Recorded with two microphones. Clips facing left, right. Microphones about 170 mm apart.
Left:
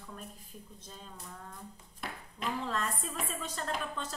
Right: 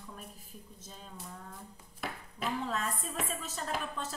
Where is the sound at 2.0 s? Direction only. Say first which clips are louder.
Right 2 dB; 5° right (ahead or behind).